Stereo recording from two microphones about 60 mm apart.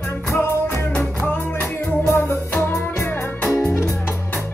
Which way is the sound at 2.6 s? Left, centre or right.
Left.